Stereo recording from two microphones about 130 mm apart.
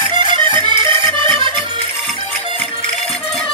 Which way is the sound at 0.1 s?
35° right (ahead or behind).